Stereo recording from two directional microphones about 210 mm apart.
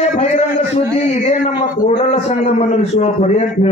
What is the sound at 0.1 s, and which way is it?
A man's voice, 35° left (ahead or behind).